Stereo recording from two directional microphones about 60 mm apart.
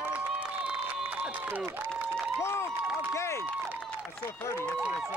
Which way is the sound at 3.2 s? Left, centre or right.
Left.